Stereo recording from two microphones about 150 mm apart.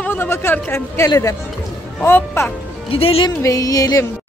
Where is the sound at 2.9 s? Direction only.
40° left (ahead or behind).